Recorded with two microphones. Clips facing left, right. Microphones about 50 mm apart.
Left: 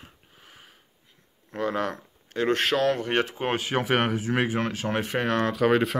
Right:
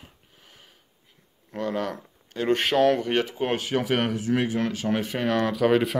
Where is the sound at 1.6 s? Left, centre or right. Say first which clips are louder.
Left 1 dB; centre.